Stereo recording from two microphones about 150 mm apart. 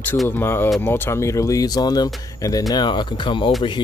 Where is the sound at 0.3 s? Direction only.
15° left (ahead or behind).